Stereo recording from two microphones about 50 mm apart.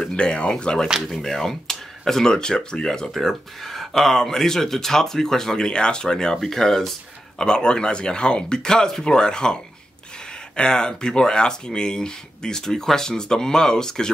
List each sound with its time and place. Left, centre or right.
0.1 s speech: centre